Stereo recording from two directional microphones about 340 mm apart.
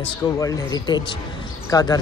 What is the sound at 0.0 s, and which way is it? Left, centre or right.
Speech, centre.